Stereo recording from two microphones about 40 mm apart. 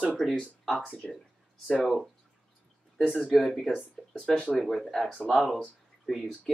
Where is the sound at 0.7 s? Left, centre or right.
Left.